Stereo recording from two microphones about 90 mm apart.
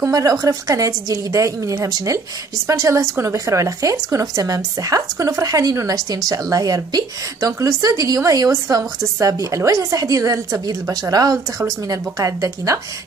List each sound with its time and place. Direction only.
0.0 s a woman's voice: 40° right (ahead or behind)